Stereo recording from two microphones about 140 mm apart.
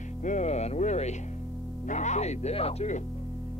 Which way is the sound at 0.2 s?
60° left (ahead or behind).